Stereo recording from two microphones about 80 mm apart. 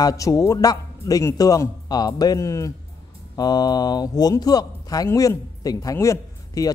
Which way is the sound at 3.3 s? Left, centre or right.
Left.